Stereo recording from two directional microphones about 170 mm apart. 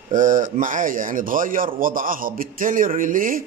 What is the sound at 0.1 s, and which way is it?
Speech, 50° right (ahead or behind).